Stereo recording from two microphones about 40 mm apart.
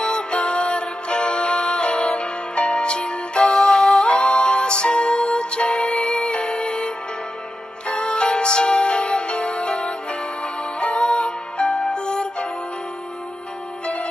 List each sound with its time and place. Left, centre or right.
0.0 s music: left
3.4 s music: centre
4.0 s music: centre